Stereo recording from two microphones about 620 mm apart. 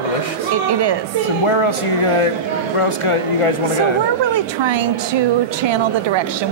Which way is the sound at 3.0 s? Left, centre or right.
Left.